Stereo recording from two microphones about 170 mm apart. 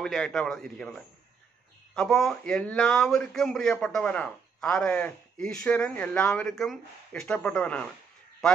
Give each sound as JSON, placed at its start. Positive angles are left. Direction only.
{"t": 0.0, "sound": "speech", "side_deg": 0}
{"t": 2.0, "sound": "speech", "side_deg": 0}